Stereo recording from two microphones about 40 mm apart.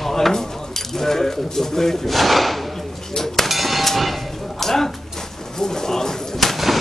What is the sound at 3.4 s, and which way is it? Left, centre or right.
Clang, centre.